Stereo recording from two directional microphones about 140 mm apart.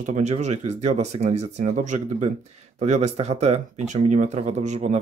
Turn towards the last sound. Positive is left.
turn(degrees=-55)  # may be behind; listen again after turning